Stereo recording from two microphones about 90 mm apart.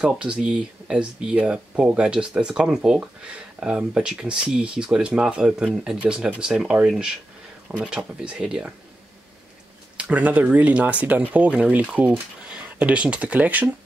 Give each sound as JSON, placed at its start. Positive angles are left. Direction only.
{"t": 0.0, "sound": "speech", "side_deg": -10}
{"t": 9.9, "sound": "speech", "side_deg": -15}